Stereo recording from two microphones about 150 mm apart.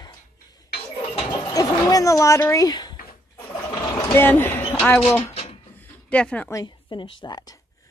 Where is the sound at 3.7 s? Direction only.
20° left (ahead or behind).